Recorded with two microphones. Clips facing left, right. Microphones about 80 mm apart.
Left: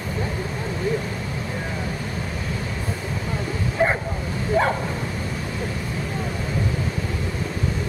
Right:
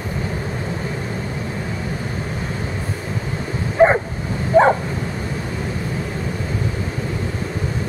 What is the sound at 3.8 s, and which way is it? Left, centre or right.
Bow-wow, right.